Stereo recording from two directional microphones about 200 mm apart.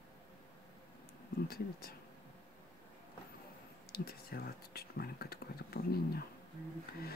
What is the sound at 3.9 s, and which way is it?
Speech, 50° left (ahead or behind).